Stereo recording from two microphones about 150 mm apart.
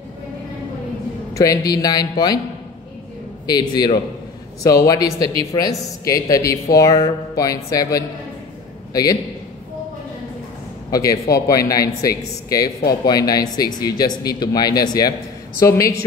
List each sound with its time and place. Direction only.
1.3 s speech: 25° left (ahead or behind)
3.4 s speech: 25° left (ahead or behind)
10.9 s speech: 20° left (ahead or behind)